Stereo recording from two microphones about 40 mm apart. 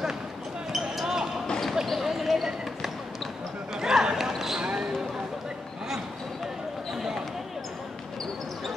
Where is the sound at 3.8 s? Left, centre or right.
Centre.